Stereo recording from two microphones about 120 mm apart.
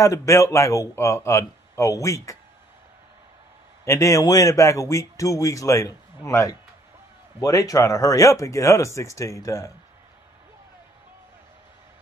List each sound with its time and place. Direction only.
0.0 s a man's voice: 25° left (ahead or behind)
3.8 s a man's voice: 25° left (ahead or behind)